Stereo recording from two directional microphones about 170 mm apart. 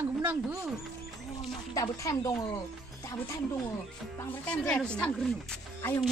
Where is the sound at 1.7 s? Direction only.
20° left (ahead or behind).